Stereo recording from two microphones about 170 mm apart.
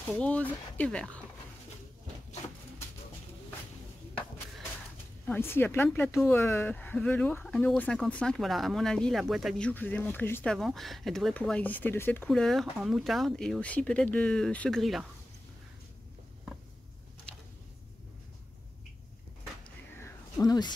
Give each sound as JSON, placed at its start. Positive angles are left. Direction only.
{"t": 0.2, "sound": "speech", "side_deg": 10}
{"t": 5.2, "sound": "speech", "side_deg": 10}
{"t": 5.9, "sound": "speech", "side_deg": 0}
{"t": 6.2, "sound": "speech", "side_deg": 15}
{"t": 12.3, "sound": "speech", "side_deg": 0}
{"t": 20.0, "sound": "a sound", "side_deg": 20}